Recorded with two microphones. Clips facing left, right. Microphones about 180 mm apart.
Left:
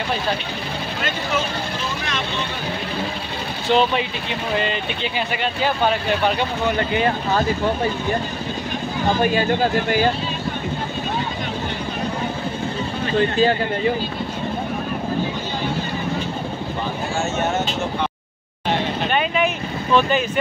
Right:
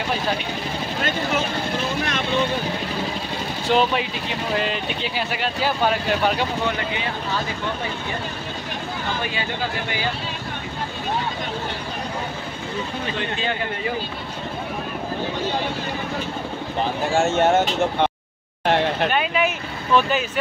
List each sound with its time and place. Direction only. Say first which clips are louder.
3.6 s speech: left 2 dB; 5° right (ahead or behind)
9.2 s speech: left 9 dB; 45° left (ahead or behind)
13.2 s speech: left 11 dB; 40° left (ahead or behind)
17.2 s speech: right 5 dB; 55° right (ahead or behind)
19.1 s vehicle: left 1 dB; 5° right (ahead or behind)